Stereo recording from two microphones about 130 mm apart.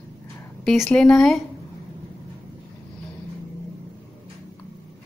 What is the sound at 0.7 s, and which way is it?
Speech, 5° left (ahead or behind).